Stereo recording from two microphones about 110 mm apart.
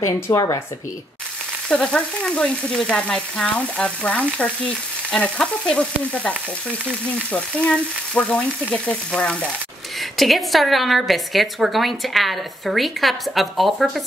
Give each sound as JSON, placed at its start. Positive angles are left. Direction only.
{"t": 0.0, "sound": "a woman's voice", "side_deg": 30}
{"t": 1.7, "sound": "frying", "side_deg": 5}
{"t": 7.3, "sound": "frying", "side_deg": 10}
{"t": 9.9, "sound": "a woman's voice", "side_deg": 0}